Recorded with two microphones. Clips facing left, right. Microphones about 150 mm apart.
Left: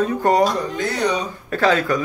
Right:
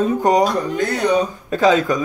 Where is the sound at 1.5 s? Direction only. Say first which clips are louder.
Right 2 dB; 15° right (ahead or behind).